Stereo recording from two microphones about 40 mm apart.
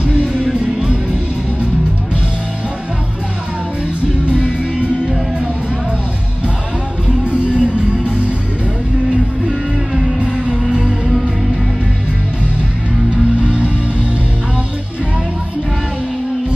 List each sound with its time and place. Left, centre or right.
0.0 s music: right
4.7 s music: right
7.2 s music: right
13.1 s music: right